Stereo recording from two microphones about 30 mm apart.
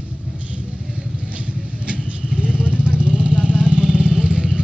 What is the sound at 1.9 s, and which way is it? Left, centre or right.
Vehicle, right.